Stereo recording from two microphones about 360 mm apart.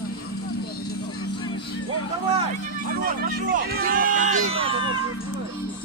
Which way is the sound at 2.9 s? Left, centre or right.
Right.